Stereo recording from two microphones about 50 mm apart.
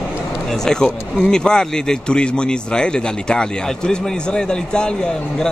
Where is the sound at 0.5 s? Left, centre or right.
Centre.